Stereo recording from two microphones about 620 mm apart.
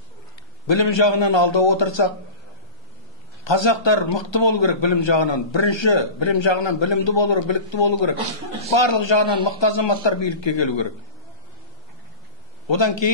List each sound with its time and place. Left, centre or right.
0.7 s a man's voice: left
3.4 s a man's voice: left
12.6 s a man's voice: left